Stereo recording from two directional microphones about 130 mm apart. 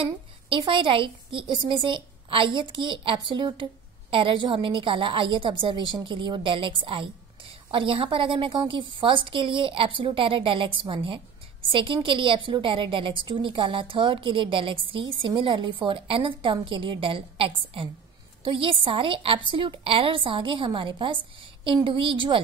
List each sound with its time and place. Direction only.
0.0 s a woman's voice: 40° right (ahead or behind)